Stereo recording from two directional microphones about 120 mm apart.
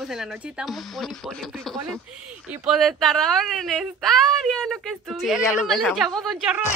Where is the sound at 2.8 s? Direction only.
Centre (ahead or behind).